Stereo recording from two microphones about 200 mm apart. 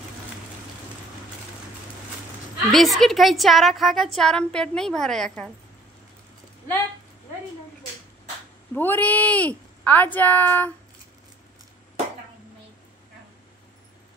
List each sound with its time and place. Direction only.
2.7 s a woman's voice: centre (ahead or behind)
8.7 s speech: 10° left (ahead or behind)